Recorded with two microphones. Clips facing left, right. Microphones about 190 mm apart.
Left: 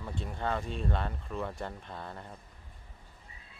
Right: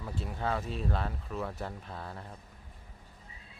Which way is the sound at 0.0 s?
5° right (ahead or behind).